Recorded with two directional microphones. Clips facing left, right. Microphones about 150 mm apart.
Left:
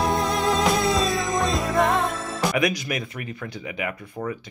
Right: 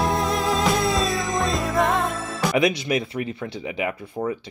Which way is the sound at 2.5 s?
25° right (ahead or behind).